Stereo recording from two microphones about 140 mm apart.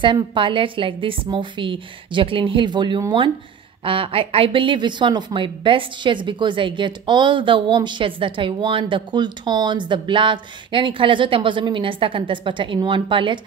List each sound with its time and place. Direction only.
0.0 s a woman's voice: 35° right (ahead or behind)